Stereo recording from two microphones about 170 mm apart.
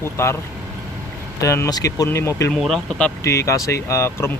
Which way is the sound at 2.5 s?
Centre (ahead or behind).